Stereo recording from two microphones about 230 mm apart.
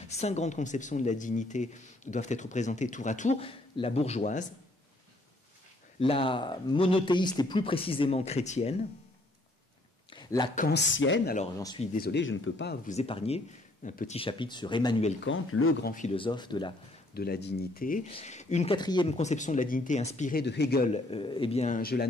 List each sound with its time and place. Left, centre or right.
0.1 s speech: left
5.9 s speech: left
10.0 s a sound: centre
10.5 s speech: left
11.0 s speech: left
11.5 s speech: centre
11.8 s speech: left
12.8 s speech: left
15.2 s speech: left
15.8 s speech: left
16.2 s speech: centre
17.1 s speech: left
20.9 s speech: left